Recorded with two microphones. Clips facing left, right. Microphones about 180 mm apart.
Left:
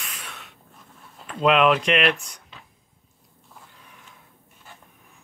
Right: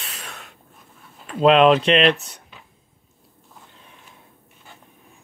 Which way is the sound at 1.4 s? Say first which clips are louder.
Right 5 dB; 30° right (ahead or behind).